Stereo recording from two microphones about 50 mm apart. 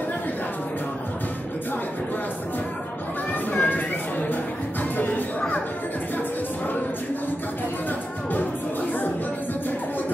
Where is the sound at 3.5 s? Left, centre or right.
Left.